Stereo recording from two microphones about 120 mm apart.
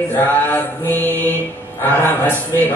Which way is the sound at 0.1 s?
15° left (ahead or behind).